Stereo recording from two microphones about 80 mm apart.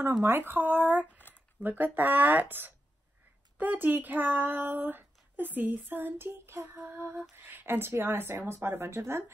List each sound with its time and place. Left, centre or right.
0.2 s speech: right
1.1 s a sound: left
1.6 s speech: right